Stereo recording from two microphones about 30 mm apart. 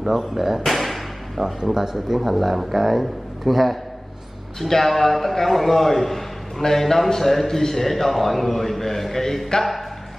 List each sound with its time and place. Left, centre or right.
0.0 s speech: centre
0.7 s a sound: centre
1.4 s speech: centre
2.2 s speech: centre
4.6 s a man's voice: centre